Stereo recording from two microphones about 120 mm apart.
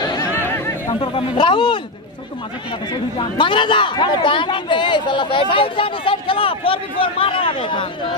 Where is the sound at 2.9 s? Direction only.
45° left (ahead or behind).